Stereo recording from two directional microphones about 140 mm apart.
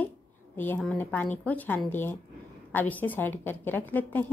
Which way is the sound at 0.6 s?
10° left (ahead or behind).